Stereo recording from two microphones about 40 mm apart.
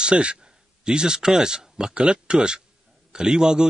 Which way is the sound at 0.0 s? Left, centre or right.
Right.